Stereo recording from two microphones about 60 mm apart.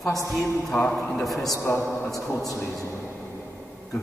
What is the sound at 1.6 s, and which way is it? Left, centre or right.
Speech, left.